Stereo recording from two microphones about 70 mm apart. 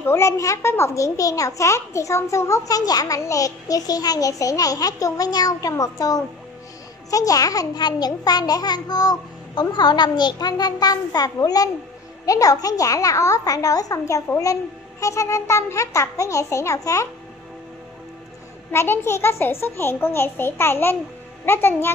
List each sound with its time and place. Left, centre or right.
0.0 s a child's voice: left
2.8 s a child's voice: left
11.3 s a child's voice: left
18.7 s a child's voice: left